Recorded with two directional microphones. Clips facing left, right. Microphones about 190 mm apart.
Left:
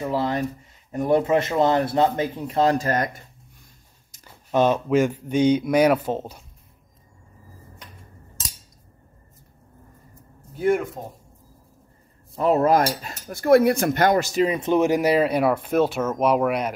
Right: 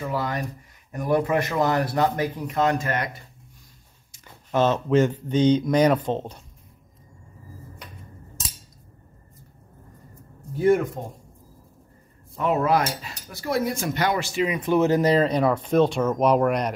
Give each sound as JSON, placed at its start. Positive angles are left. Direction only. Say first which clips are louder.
{"t": 0.0, "sound": "speech", "louder": "left 4 dB", "side_deg": 25}
{"t": 4.5, "sound": "speech", "louder": "left 1 dB", "side_deg": 15}
{"t": 10.6, "sound": "speech", "louder": "right 2 dB", "side_deg": 0}
{"t": 12.4, "sound": "speech", "louder": "left 3 dB", "side_deg": 35}
{"t": 14.6, "sound": "speech", "louder": "right 3 dB", "side_deg": 15}